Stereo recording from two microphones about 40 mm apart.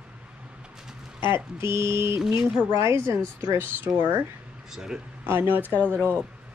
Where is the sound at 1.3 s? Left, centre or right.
Right.